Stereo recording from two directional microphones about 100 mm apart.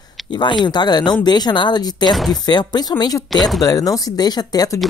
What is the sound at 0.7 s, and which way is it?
Speech, 45° left (ahead or behind).